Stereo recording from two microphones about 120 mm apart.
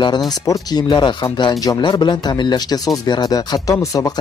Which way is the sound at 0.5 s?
35° left (ahead or behind).